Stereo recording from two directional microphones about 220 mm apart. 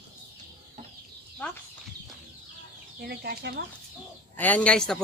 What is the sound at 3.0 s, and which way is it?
Speech, 45° right (ahead or behind).